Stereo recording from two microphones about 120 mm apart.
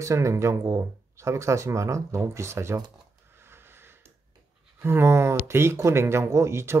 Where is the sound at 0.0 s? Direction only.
25° right (ahead or behind).